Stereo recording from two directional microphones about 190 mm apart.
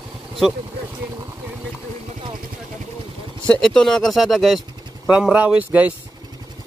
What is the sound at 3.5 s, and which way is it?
Speech, 5° left (ahead or behind).